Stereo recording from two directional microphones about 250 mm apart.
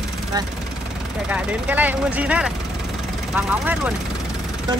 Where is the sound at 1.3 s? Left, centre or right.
Centre.